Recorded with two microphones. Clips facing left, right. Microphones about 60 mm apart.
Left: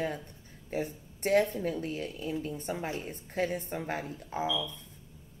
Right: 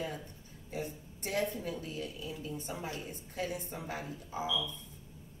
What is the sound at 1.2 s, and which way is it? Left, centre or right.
Speech, left.